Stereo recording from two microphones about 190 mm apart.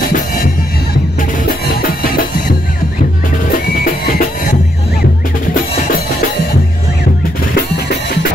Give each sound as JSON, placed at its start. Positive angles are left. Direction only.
{"t": 1.8, "sound": "music", "side_deg": 55}
{"t": 3.5, "sound": "drum", "side_deg": 50}
{"t": 7.5, "sound": "music", "side_deg": 60}